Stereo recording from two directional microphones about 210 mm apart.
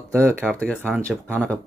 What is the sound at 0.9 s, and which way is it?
Speech, 10° right (ahead or behind).